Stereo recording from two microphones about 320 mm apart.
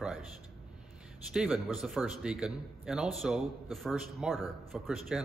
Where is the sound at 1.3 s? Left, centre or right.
Centre.